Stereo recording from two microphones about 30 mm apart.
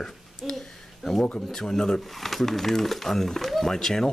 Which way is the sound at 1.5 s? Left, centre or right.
Centre.